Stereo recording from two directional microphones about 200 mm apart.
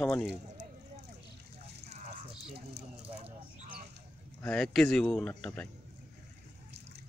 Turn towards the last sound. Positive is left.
turn(degrees=5)  # may be behind; listen again after turning